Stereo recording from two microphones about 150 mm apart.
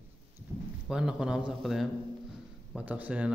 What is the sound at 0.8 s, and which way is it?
A man's voice, 5° right (ahead or behind).